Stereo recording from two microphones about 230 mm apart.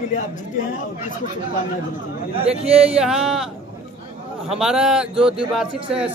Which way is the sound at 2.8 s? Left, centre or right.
Centre.